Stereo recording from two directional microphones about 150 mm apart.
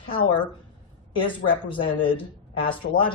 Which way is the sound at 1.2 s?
35° left (ahead or behind).